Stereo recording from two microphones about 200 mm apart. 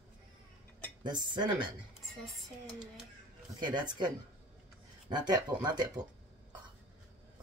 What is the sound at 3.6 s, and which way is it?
Speech, 20° right (ahead or behind).